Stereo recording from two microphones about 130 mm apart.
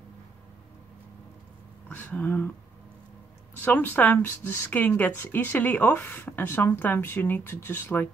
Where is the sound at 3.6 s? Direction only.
15° left (ahead or behind).